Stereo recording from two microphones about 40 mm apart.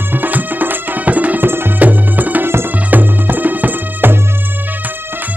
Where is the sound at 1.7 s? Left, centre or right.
Right.